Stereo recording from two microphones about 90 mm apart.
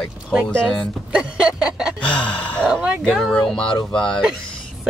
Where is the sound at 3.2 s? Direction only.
10° left (ahead or behind).